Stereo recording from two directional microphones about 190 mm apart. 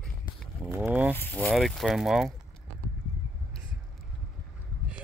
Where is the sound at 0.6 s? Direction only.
10° right (ahead or behind).